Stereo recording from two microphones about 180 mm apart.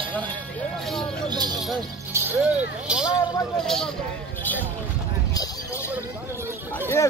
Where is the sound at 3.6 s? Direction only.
Centre (ahead or behind).